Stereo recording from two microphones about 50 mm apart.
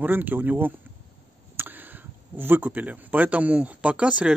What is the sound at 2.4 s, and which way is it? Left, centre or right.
Speech, right.